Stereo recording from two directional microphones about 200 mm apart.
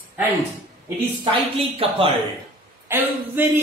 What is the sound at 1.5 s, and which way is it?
Speech, 30° right (ahead or behind).